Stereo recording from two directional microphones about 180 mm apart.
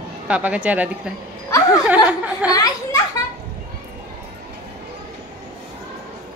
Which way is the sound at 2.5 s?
20° left (ahead or behind).